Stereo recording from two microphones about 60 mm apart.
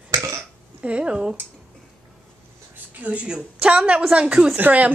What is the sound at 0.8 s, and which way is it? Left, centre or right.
Speech, centre.